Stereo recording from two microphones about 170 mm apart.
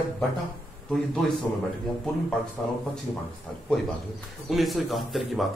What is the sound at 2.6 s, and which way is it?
Speech, 10° left (ahead or behind).